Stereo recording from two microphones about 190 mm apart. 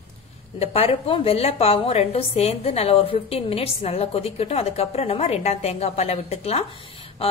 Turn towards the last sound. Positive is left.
turn(degrees=30)  # may be behind; listen again after turning